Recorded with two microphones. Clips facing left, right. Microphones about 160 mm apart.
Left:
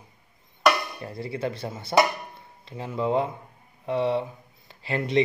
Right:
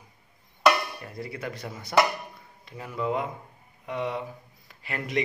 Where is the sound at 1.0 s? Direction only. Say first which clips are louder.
Left 5 dB; 30° left (ahead or behind).